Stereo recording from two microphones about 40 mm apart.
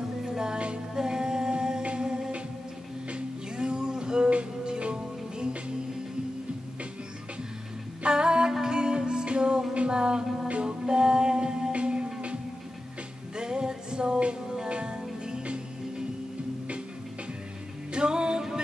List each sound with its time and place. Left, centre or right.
0.2 s music: centre
0.9 s singing: centre
3.1 s music: right
8.0 s music: right
13.4 s music: centre
17.9 s music: right